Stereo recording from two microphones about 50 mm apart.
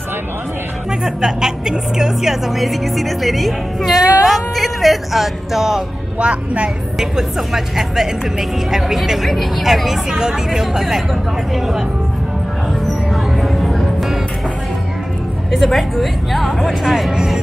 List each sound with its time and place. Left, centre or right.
1.0 s a woman's voice: centre
6.1 s speech: right
7.0 s a woman's voice: centre
12.8 s music: centre
15.5 s a woman's voice: centre